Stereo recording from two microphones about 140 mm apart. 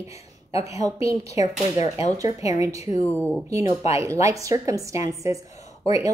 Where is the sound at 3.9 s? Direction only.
20° right (ahead or behind).